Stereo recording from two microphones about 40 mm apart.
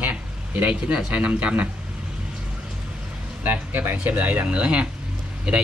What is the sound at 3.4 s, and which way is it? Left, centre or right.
Speech, right.